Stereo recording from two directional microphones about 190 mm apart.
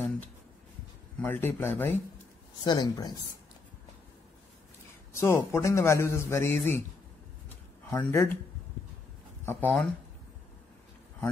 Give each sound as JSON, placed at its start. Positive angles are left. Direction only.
{"t": 1.2, "sound": "a man's voice", "side_deg": 10}
{"t": 2.6, "sound": "speech", "side_deg": 20}
{"t": 5.1, "sound": "a man's voice", "side_deg": 15}
{"t": 7.4, "sound": "a sound", "side_deg": 10}
{"t": 9.5, "sound": "a man's voice", "side_deg": 10}